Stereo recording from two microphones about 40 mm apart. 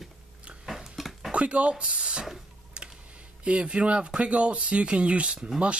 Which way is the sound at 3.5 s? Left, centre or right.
Right.